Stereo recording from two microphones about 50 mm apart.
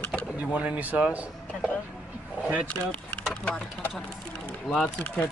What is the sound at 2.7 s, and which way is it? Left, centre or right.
Speech, left.